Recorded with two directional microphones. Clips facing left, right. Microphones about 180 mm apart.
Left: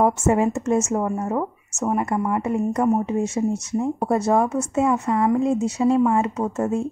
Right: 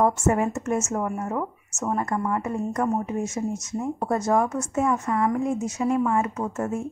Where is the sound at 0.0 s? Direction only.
25° left (ahead or behind).